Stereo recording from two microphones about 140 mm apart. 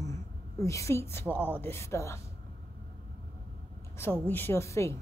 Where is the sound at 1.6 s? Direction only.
20° left (ahead or behind).